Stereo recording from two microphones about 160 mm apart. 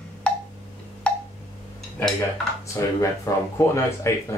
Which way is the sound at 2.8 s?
20° left (ahead or behind).